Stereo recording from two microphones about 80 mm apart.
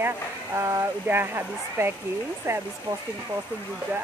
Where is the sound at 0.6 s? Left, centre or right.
Right.